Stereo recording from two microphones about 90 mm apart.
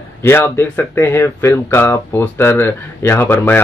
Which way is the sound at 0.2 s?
25° left (ahead or behind).